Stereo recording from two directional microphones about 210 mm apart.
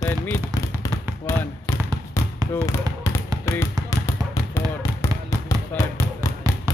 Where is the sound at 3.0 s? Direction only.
15° left (ahead or behind).